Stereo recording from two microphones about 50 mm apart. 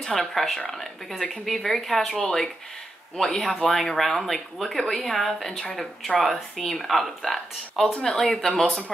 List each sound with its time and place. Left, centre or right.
0.0 s speech: centre
1.3 s speech: centre
3.6 s speech: centre